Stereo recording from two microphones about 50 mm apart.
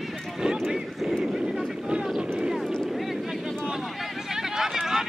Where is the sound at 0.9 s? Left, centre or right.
Centre.